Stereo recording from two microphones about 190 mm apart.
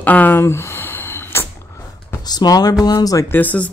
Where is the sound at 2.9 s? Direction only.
20° left (ahead or behind).